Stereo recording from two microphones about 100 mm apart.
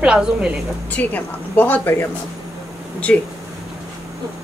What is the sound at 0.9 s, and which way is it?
Speech, 15° left (ahead or behind).